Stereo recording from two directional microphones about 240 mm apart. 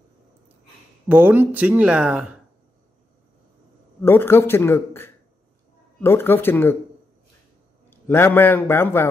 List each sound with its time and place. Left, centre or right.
1.0 s speech: centre
4.0 s a man's voice: centre
7.9 s a man's voice: centre